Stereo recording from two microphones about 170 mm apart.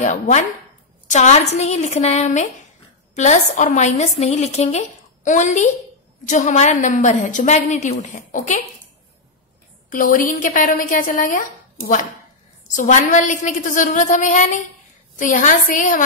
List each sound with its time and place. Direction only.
0.0 s a woman's voice: 45° left (ahead or behind)
9.8 s a woman's voice: 55° left (ahead or behind)